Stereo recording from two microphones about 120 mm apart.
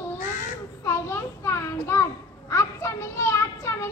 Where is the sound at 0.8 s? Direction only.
20° left (ahead or behind).